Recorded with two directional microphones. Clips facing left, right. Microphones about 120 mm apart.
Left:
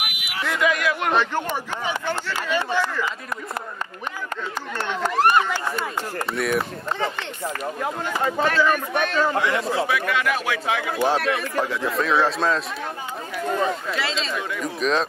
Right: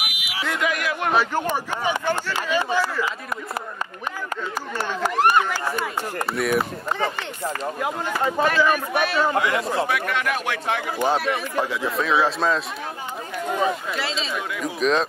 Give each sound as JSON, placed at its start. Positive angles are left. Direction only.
{"t": 0.5, "sound": "speech", "side_deg": -20}
{"t": 1.1, "sound": "speech", "side_deg": -5}
{"t": 4.7, "sound": "speech", "side_deg": -5}
{"t": 6.3, "sound": "a man's voice", "side_deg": 0}
{"t": 6.9, "sound": "speech", "side_deg": -10}
{"t": 8.4, "sound": "a man's voice", "side_deg": -10}
{"t": 13.5, "sound": "speech", "side_deg": -15}
{"t": 13.9, "sound": "a man's voice", "side_deg": 0}